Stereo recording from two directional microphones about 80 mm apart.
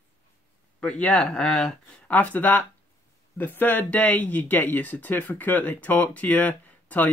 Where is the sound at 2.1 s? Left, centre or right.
Centre.